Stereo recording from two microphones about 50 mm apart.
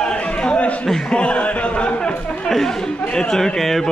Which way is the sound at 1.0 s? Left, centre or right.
Left.